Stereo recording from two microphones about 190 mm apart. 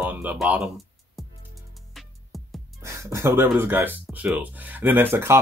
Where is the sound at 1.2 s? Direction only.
Centre (ahead or behind).